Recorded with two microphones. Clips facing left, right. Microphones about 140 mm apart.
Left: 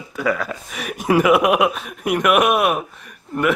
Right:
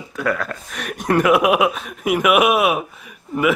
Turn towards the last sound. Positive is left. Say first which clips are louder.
# right 1 dB
turn(degrees=-5)  # may be behind; listen again after turning